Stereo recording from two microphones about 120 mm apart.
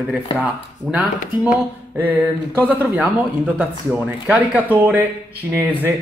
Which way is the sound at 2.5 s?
15° right (ahead or behind).